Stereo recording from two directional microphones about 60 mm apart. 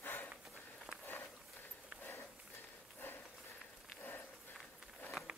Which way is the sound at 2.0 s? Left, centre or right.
Left.